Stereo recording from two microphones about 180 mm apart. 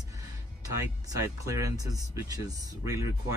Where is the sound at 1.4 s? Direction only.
20° right (ahead or behind).